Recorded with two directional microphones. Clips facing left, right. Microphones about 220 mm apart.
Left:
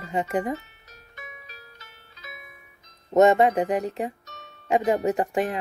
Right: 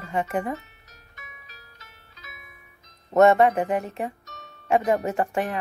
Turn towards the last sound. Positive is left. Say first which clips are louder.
# left 1 dB
turn(degrees=20)  # may be behind; listen again after turning